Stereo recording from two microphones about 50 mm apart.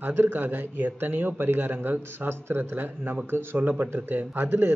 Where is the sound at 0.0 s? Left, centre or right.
Right.